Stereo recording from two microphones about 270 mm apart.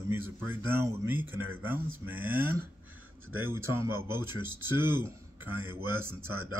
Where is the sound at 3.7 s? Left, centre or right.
Centre.